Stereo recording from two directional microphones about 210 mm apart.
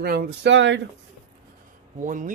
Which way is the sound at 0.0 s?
50° right (ahead or behind).